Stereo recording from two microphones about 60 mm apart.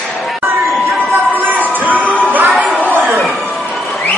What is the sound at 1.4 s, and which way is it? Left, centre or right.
Music, right.